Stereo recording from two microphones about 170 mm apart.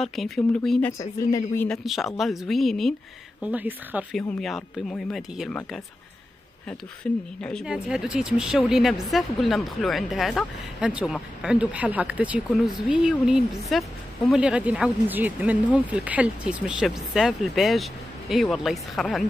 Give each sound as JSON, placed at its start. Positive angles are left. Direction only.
{"t": 0.0, "sound": "speech", "side_deg": 0}
{"t": 0.9, "sound": "speech", "side_deg": 15}
{"t": 1.7, "sound": "speech", "side_deg": 0}
{"t": 3.4, "sound": "a woman's voice", "side_deg": -10}
{"t": 4.2, "sound": "speech", "side_deg": 5}
{"t": 7.4, "sound": "a woman's voice", "side_deg": 0}